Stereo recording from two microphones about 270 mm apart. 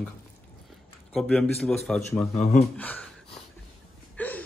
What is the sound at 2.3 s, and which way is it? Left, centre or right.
Speech, left.